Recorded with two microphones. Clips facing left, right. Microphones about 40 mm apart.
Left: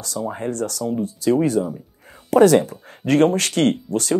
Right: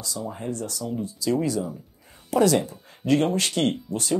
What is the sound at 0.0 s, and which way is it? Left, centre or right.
Speech, left.